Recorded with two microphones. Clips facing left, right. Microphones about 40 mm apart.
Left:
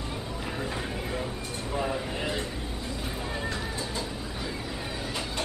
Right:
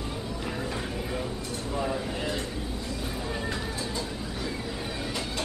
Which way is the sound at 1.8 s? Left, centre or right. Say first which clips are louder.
Even; centre.